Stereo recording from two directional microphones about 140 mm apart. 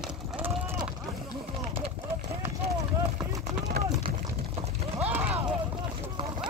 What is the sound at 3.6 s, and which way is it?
Run, 55° right (ahead or behind).